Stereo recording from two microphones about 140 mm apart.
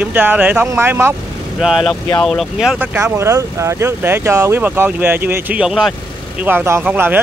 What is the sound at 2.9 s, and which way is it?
Speech, 20° right (ahead or behind).